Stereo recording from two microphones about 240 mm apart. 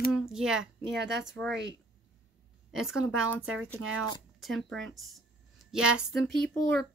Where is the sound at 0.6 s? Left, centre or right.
Right.